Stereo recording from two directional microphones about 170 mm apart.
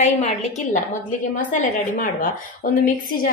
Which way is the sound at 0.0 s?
40° left (ahead or behind).